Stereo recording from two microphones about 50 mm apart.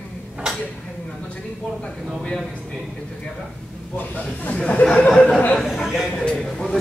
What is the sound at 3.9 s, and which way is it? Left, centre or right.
A man's voice, left.